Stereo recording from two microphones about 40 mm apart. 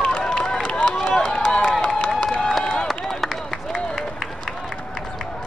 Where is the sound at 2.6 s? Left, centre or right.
Left.